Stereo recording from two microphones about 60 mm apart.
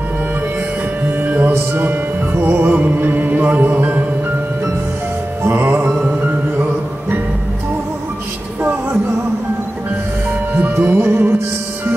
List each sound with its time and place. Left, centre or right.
1.0 s music: right
5.4 s music: right
10.5 s music: right
11.0 s music: right